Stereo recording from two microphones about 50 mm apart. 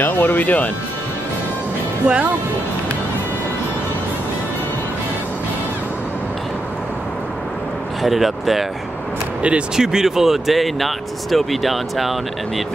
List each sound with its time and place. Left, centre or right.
0.0 s speech: left
2.0 s speech: right
8.0 s speech: centre
9.8 s speech: centre